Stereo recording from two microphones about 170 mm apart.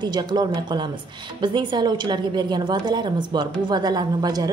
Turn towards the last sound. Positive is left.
turn(degrees=-25)  # may be behind; listen again after turning